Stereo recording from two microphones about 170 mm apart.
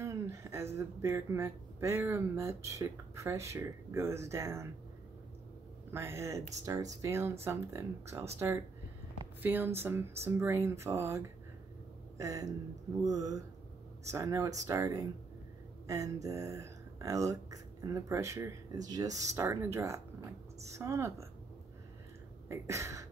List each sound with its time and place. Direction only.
0.0 s speech: 15° right (ahead or behind)
5.9 s speech: 15° right (ahead or behind)
9.4 s speech: 10° right (ahead or behind)
22.5 s speech: 15° right (ahead or behind)